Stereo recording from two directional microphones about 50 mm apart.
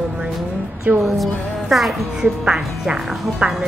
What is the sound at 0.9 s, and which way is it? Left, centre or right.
Speech, right.